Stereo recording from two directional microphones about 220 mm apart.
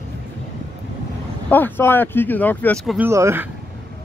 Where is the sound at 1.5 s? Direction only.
10° left (ahead or behind).